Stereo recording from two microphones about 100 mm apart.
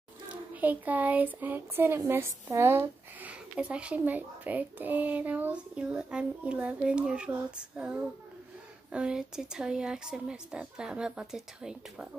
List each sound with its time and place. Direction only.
0.3 s speech: 15° right (ahead or behind)